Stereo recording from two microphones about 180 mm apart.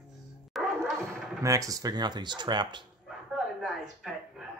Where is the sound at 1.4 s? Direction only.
20° right (ahead or behind).